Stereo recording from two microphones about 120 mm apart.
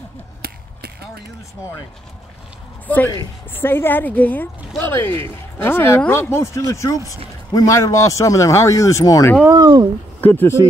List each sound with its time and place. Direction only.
3.1 s a woman's voice: 20° left (ahead or behind)
9.5 s speech: 35° right (ahead or behind)
10.2 s speech: 15° left (ahead or behind)